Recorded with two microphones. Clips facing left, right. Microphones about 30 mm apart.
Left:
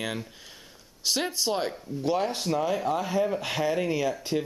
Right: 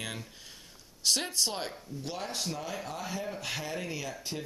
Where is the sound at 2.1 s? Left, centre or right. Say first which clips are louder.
Left 9 dB; centre.